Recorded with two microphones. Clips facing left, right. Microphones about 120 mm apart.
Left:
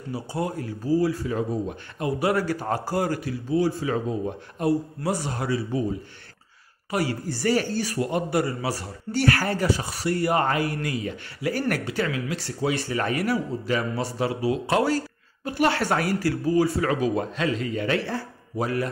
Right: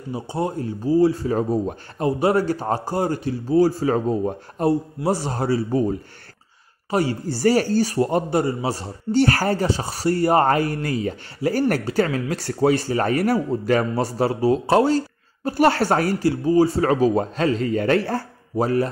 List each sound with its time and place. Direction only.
0.1 s speech: 25° right (ahead or behind)
1.3 s speech: 40° right (ahead or behind)
4.6 s speech: 30° right (ahead or behind)
5.7 s speech: 50° right (ahead or behind)
6.9 s speech: 30° right (ahead or behind)
12.0 s speech: 45° right (ahead or behind)
12.7 s speech: 35° right (ahead or behind)
13.2 s speech: 50° right (ahead or behind)